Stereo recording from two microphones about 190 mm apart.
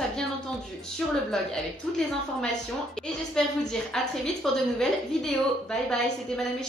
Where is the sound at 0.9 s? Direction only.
5° left (ahead or behind).